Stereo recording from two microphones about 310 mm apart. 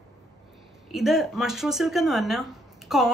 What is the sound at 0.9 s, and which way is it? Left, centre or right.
Speech, centre.